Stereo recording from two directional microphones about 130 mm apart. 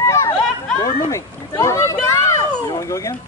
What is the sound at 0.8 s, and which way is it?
Speech, 25° left (ahead or behind).